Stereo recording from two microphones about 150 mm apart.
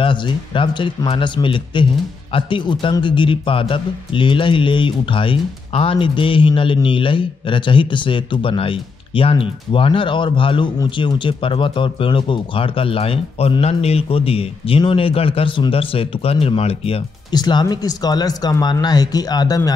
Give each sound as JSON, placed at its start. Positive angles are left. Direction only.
{"t": 0.0, "sound": "speech", "side_deg": 30}
{"t": 17.3, "sound": "speech", "side_deg": 30}